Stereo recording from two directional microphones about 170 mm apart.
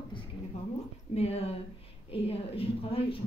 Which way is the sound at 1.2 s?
40° left (ahead or behind).